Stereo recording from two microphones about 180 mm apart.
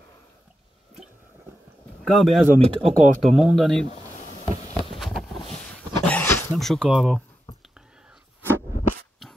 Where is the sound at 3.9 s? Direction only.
35° left (ahead or behind).